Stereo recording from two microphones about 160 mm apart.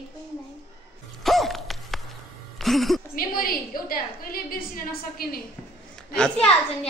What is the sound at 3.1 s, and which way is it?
A woman's voice, 65° left (ahead or behind).